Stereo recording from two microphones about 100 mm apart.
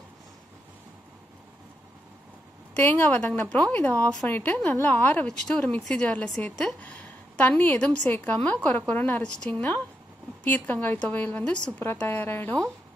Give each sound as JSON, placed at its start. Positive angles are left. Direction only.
{"t": 2.7, "sound": "a woman's voice", "side_deg": 15}